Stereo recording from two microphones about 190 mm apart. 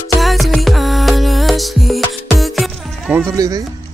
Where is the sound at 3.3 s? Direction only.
15° right (ahead or behind).